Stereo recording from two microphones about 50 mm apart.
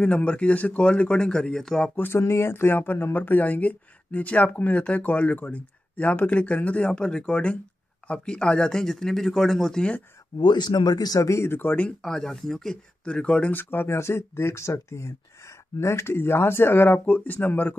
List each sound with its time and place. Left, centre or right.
0.0 s speech: left
2.0 s speech: left
6.9 s speech: centre
11.1 s speech: left
12.0 s speech: centre
13.0 s speech: left
13.5 s speech: left
13.9 s speech: left